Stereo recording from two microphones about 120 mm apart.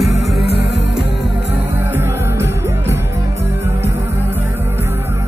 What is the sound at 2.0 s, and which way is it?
Music, 20° right (ahead or behind).